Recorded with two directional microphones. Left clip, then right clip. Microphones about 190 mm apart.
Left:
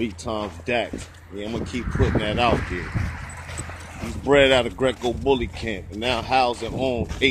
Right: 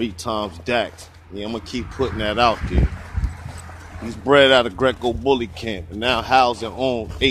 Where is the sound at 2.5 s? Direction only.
55° right (ahead or behind).